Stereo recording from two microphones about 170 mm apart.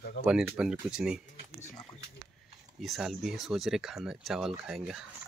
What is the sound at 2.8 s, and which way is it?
Speech, centre (ahead or behind).